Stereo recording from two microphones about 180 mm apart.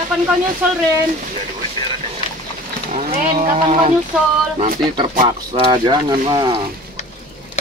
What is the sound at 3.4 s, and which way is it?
Speech, 40° right (ahead or behind).